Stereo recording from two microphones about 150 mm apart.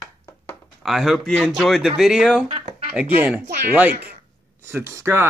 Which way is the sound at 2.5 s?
40° right (ahead or behind).